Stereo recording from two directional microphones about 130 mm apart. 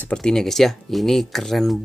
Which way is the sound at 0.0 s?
5° left (ahead or behind).